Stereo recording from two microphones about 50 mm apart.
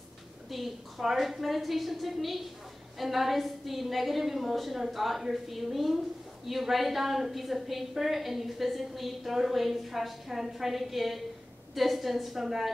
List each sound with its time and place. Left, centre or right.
0.5 s a woman's voice: centre